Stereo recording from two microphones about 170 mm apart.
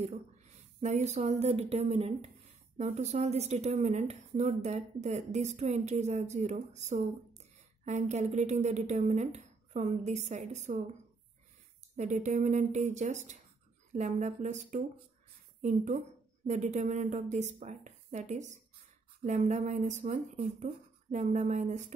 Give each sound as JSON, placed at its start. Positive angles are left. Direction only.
{"t": 0.7, "sound": "a woman's voice", "side_deg": -45}
{"t": 12.0, "sound": "a woman's voice", "side_deg": -45}